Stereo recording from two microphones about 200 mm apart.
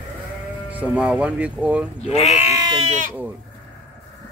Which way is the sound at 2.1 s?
30° left (ahead or behind).